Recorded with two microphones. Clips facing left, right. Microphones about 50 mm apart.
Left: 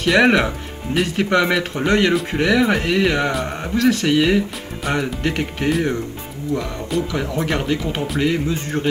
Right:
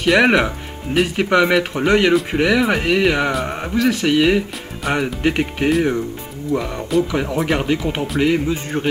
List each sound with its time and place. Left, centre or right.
0.0 s speech: centre
5.7 s speech: centre
6.5 s speech: right
7.1 s speech: centre